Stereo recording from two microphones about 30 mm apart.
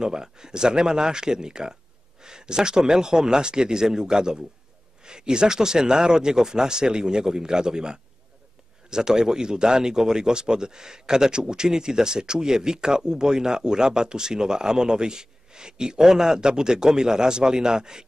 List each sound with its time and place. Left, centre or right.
0.0 s speech: right